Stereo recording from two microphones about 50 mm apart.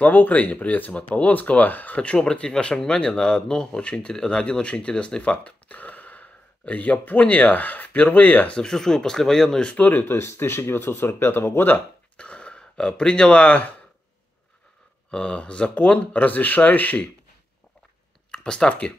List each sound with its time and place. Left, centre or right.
0.0 s speech: left
2.0 s speech: centre; by 8.5 s left
8.5 s speech: centre
9.7 s speech: left
10.0 s speech: left
12.2 s speech: left
15.0 s speech: centre
18.3 s speech: centre